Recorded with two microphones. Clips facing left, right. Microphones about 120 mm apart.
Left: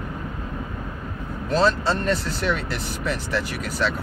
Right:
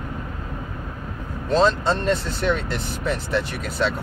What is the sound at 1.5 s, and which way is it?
Speech, 20° right (ahead or behind).